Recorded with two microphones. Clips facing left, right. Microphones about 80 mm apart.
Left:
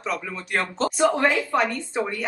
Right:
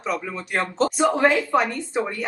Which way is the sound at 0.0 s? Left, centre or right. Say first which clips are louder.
Right 2 dB; centre.